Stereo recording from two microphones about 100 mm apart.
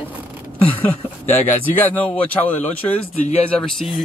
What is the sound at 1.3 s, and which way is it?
Speech, 20° left (ahead or behind).